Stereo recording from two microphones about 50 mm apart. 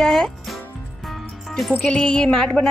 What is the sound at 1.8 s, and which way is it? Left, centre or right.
Music, centre.